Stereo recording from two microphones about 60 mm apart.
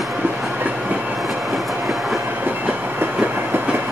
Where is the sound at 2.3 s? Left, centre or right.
Right.